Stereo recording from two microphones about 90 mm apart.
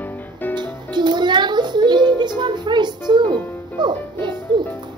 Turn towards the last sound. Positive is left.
turn(degrees=-55)  # may be behind; listen again after turning